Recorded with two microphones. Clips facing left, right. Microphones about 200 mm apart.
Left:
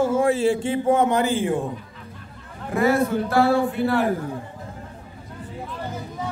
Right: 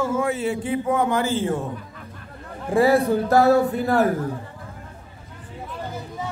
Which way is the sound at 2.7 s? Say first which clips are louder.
Right 3 dB; 35° right (ahead or behind).